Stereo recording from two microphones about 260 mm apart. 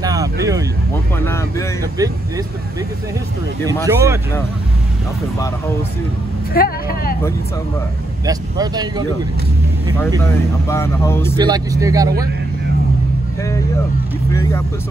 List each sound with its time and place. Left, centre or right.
0.0 s vehicle: centre
1.1 s speech: centre
3.8 s speech: centre
6.5 s speech: left
8.3 s speech: centre
10.7 s speech: centre
11.3 s speech: centre